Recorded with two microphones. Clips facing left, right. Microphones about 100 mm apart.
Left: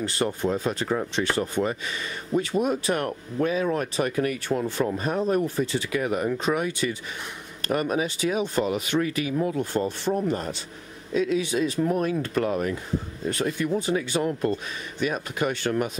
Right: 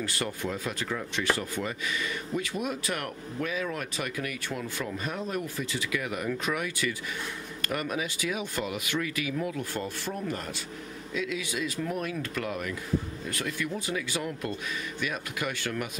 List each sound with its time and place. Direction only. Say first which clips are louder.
0.0 s speech: left 7 dB; 30° left (ahead or behind)